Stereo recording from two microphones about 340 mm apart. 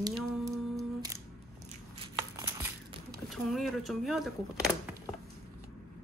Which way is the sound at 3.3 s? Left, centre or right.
Centre.